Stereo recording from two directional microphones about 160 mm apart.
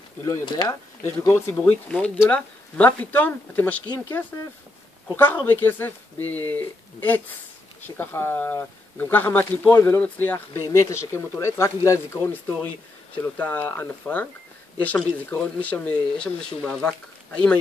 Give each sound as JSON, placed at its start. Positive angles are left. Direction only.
{"t": 0.2, "sound": "speech", "side_deg": 25}